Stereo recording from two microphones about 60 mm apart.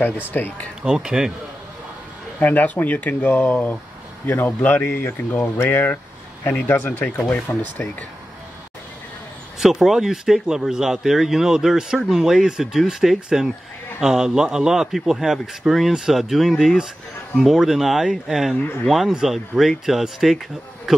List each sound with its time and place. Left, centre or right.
0.0 s speech: left
0.8 s speech: centre
2.4 s speech: left
9.6 s speech: centre